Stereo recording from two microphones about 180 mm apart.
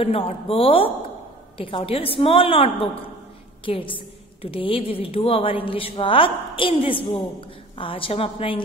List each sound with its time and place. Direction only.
0.0 s a woman's voice: 30° left (ahead or behind)